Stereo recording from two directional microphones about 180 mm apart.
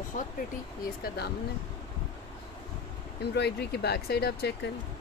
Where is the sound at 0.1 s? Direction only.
45° left (ahead or behind).